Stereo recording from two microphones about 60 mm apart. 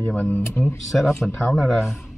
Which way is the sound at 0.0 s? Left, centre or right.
Left.